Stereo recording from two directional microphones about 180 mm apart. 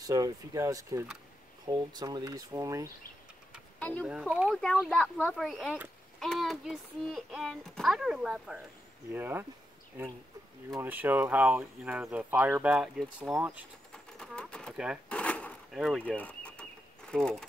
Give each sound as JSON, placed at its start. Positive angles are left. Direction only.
{"t": 0.0, "sound": "speech", "side_deg": -20}
{"t": 3.8, "sound": "speech", "side_deg": 10}
{"t": 4.1, "sound": "speech", "side_deg": -5}
{"t": 10.8, "sound": "speech", "side_deg": -10}
{"t": 13.9, "sound": "pigeon", "side_deg": 5}
{"t": 15.0, "sound": "a sound", "side_deg": 5}
{"t": 16.0, "sound": "bird", "side_deg": 10}